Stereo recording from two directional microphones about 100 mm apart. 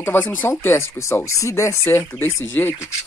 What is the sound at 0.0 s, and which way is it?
Speech, 20° left (ahead or behind).